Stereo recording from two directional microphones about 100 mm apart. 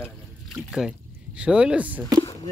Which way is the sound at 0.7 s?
5° right (ahead or behind).